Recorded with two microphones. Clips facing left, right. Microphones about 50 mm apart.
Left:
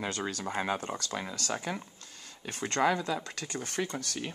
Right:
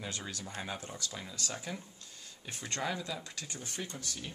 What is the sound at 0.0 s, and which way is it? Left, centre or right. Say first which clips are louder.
Speech: left 8 dB; left.